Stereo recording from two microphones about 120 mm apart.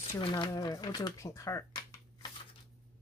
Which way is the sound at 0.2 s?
40° left (ahead or behind).